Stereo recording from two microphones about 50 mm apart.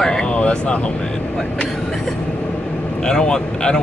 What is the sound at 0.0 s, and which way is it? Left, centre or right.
Vehicle, centre.